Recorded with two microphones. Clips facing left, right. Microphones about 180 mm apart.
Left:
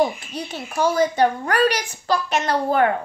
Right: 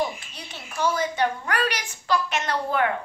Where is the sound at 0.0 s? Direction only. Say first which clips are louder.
Left 7 dB; 40° left (ahead or behind).